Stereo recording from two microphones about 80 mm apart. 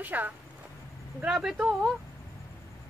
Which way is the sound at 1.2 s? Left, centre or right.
Centre.